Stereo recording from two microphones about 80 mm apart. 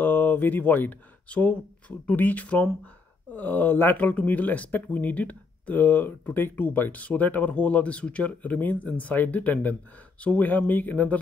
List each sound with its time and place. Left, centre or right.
0.0 s speech: left